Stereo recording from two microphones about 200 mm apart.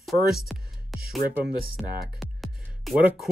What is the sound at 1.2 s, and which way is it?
Speech, 50° right (ahead or behind).